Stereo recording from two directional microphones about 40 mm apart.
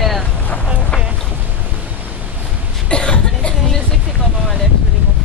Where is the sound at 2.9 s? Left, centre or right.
Left.